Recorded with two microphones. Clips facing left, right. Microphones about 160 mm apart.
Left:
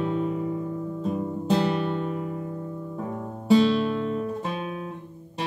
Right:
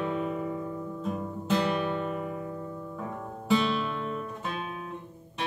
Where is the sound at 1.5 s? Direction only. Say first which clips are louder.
Left 3 dB; 30° left (ahead or behind).